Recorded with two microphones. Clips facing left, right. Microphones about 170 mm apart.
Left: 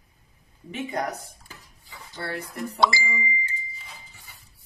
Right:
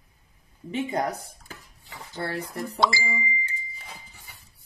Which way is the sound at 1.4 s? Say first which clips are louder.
Right 3 dB; 90° right.